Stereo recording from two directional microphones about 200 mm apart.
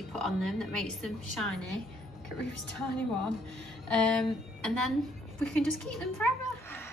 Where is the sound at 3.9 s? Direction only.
5° left (ahead or behind).